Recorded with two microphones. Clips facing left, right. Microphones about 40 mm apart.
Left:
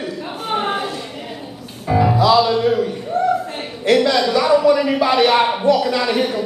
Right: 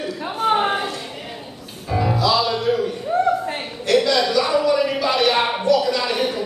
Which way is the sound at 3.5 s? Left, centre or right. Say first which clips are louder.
Left 1 dB; centre.